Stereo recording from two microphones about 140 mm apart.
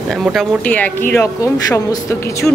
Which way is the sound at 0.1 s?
Centre (ahead or behind).